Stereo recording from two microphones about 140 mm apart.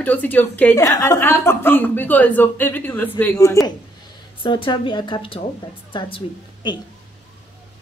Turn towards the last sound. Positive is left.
turn(degrees=35)  # may be behind; listen again after turning